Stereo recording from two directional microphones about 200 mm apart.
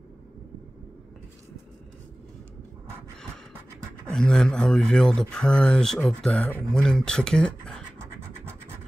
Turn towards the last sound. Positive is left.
turn(degrees=5)  # may be behind; listen again after turning